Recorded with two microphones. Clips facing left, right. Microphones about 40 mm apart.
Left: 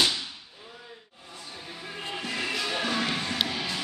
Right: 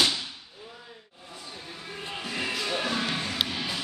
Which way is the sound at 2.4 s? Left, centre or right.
Centre.